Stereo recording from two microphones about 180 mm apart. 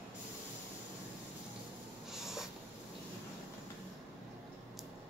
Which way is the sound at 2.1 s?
Centre (ahead or behind).